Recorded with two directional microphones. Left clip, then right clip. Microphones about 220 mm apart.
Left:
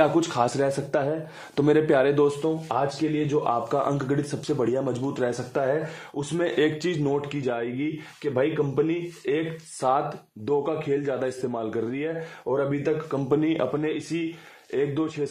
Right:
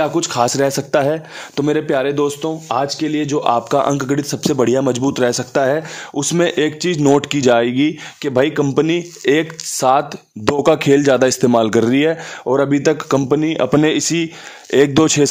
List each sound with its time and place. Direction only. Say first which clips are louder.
0.0 s speech: right 5 dB; 20° right (ahead or behind)
1.6 s speech: right 3 dB; 20° right (ahead or behind)
2.7 s speech: right 10 dB; 55° right (ahead or behind)
6.5 s speech: right 6 dB; 30° right (ahead or behind); by 9.4 s 60° right (ahead or behind)
9.8 s speech: right 10 dB; 40° right (ahead or behind)
10.6 s speech: right 14 dB; 55° right (ahead or behind)
13.3 s speech: right 4 dB; 30° right (ahead or behind)
13.7 s speech: right 13 dB; 55° right (ahead or behind)